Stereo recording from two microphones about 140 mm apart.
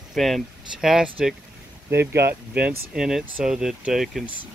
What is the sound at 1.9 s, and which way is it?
Speech, 15° right (ahead or behind).